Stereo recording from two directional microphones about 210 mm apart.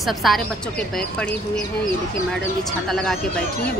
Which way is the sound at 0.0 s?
Centre (ahead or behind).